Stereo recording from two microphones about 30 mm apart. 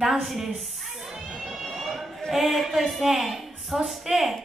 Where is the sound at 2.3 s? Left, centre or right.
Centre.